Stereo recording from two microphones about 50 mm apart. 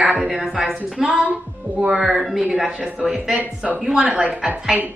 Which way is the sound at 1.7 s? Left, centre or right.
Right.